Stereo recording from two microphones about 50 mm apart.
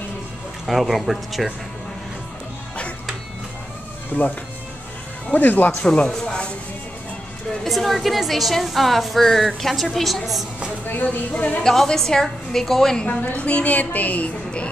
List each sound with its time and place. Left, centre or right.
0.7 s a woman's voice: centre
4.1 s speech: left
5.3 s speech: left
5.9 s a woman's voice: left
7.6 s a woman's voice: centre
10.9 s speech: left
11.6 s a woman's voice: centre
13.4 s a woman's voice: left